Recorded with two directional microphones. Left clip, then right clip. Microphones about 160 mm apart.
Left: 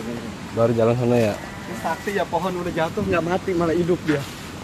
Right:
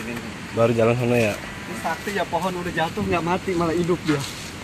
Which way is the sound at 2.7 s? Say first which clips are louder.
Left 2 dB; 45° right (ahead or behind).